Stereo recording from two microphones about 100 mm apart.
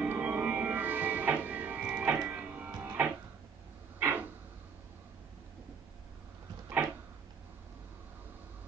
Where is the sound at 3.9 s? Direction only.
20° right (ahead or behind).